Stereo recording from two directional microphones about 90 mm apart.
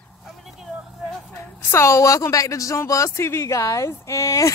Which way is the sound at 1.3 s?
30° left (ahead or behind).